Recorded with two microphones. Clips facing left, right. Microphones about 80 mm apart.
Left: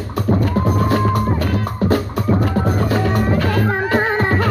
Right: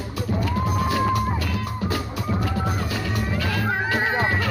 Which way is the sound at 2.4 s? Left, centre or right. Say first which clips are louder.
Left 7 dB; left.